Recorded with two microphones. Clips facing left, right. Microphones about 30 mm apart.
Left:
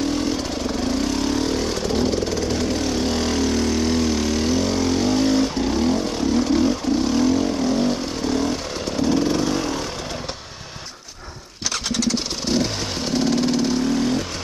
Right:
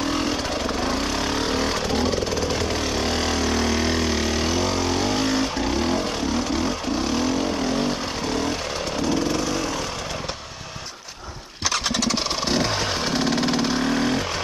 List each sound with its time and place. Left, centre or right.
0.1 s vehicle: right
6.1 s vehicle: centre
9.1 s vehicle: centre
11.7 s engine: centre
12.1 s motorcycle: centre
13.7 s motorcycle: right